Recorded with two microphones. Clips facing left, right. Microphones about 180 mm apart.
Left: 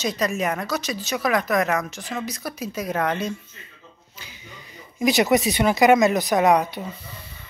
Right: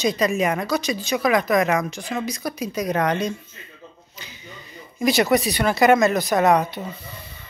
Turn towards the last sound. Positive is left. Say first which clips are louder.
# even
turn(degrees=10)  # may be behind; listen again after turning